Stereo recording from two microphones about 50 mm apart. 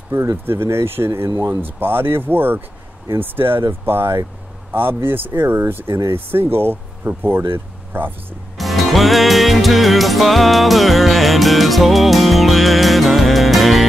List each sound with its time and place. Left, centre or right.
0.1 s speech: right
1.6 s speech: right
8.5 s music: centre